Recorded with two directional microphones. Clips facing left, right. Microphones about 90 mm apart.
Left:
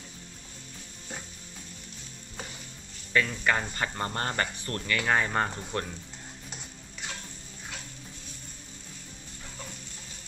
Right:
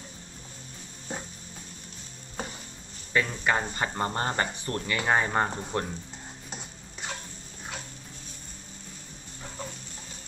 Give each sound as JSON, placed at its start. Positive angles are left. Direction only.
{"t": 1.1, "sound": "a sound", "side_deg": -30}
{"t": 3.1, "sound": "speech", "side_deg": -20}
{"t": 6.5, "sound": "stir", "side_deg": -30}